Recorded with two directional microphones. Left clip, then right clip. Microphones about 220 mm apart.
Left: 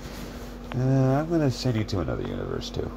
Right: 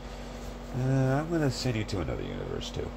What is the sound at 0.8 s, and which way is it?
Speech, 10° left (ahead or behind).